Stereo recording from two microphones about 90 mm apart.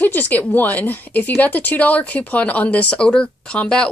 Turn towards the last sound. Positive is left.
turn(degrees=10)  # may be behind; listen again after turning